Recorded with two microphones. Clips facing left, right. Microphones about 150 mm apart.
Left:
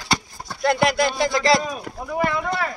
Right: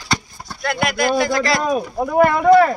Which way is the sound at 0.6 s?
30° left (ahead or behind).